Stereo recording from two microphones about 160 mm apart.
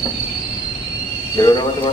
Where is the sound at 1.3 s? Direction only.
25° left (ahead or behind).